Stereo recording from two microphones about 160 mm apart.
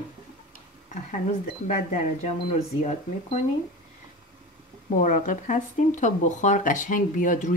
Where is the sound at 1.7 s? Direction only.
50° left (ahead or behind).